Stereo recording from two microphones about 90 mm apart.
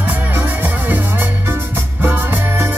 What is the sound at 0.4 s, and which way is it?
Music, 20° right (ahead or behind).